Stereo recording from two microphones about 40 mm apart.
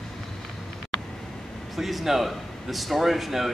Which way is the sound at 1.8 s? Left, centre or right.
Centre.